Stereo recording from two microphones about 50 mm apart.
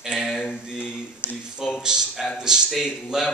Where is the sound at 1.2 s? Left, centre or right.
Left.